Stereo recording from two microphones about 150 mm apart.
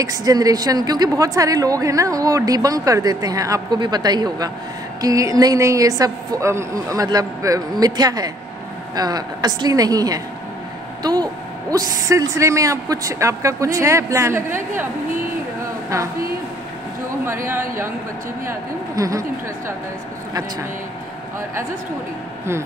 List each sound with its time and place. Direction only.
0.0 s a woman's voice: 25° right (ahead or behind)
11.0 s vehicle: 25° right (ahead or behind)
11.7 s a woman's voice: 25° right (ahead or behind)
17.5 s a woman's voice: 15° right (ahead or behind)